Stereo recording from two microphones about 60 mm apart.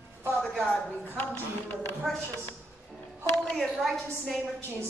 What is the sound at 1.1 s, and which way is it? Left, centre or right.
Speech, left.